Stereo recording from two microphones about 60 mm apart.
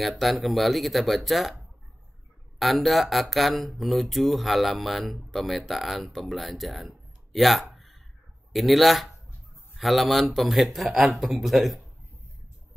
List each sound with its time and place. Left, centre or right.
0.0 s speech: centre
2.6 s speech: centre
7.3 s a sound: centre
8.5 s speech: centre